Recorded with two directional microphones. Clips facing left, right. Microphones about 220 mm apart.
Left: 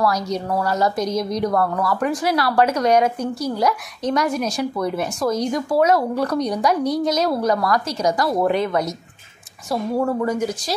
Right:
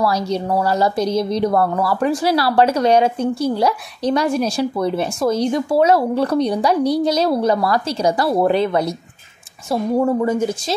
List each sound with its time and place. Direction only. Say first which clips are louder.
0.0 s a woman's voice: right 2 dB; 30° right (ahead or behind)